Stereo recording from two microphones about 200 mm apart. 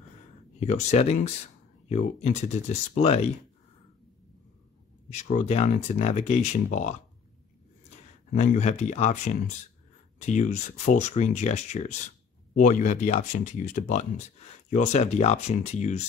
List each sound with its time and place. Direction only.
0.6 s speech: 35° left (ahead or behind)
5.1 s speech: 35° left (ahead or behind)
8.4 s speech: 35° left (ahead or behind)